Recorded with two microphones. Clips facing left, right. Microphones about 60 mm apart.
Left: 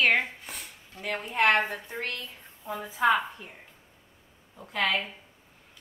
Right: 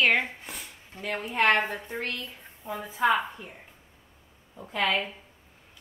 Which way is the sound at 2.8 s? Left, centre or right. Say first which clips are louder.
Even; centre.